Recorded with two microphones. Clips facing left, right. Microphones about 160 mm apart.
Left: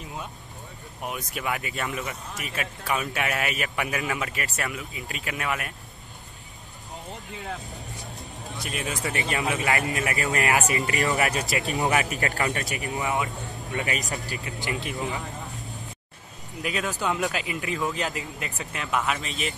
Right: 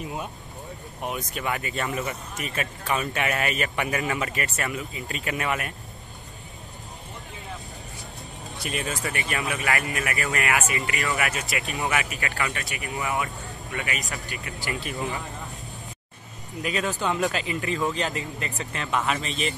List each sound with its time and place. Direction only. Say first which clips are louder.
1.0 s a man's voice: right 1 dB; 5° left (ahead or behind)
8.8 s speech: left 1 dB; 20° left (ahead or behind)
10.4 s speech: left 3 dB; 35° left (ahead or behind)
12.9 s speech: even; 20° left (ahead or behind)
13.8 s speech: left 2 dB; 40° left (ahead or behind)
14.6 s speech: even; 20° left (ahead or behind)
16.6 s a man's voice: right 1 dB; 5° left (ahead or behind)